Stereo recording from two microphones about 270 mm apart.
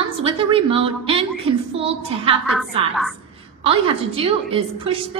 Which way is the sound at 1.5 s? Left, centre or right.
Right.